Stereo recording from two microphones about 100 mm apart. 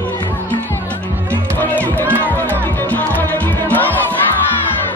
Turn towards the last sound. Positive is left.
turn(degrees=20)  # may be behind; listen again after turning